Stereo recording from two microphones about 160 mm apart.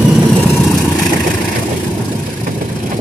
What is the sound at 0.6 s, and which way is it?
Vehicle, centre (ahead or behind).